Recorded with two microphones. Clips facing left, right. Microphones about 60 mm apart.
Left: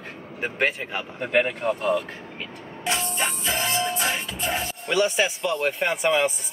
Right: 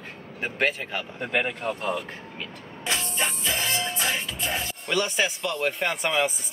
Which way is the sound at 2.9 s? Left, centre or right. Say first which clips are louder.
Left 2 dB; left.